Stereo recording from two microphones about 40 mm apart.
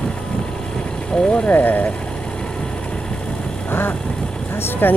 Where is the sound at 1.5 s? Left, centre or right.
Left.